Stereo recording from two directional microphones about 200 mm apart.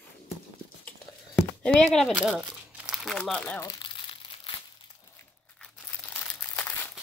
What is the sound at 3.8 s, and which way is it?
Crumpling, 25° left (ahead or behind).